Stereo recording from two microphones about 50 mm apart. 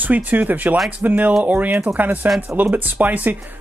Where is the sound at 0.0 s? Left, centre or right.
Right.